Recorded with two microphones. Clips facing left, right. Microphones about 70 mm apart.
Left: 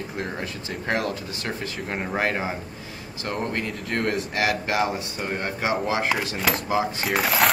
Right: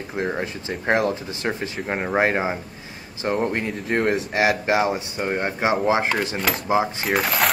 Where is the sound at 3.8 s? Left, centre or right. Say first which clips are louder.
Right 5 dB; centre.